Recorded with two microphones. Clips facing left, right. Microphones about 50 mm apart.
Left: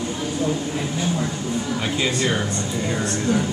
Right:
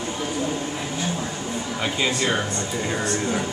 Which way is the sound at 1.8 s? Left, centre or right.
Centre.